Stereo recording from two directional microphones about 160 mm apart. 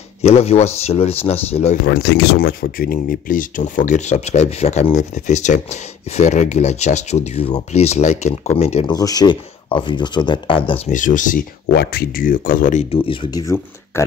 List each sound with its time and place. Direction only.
0.2 s speech: 40° left (ahead or behind)
1.9 s speech: 90° left; by 8.8 s 40° left (ahead or behind)
8.8 s speech: 25° left (ahead or behind)
10.9 s speech: 55° left (ahead or behind)
11.7 s speech: 85° left; by 12.8 s 60° left (ahead or behind)
12.9 s speech: 35° left (ahead or behind)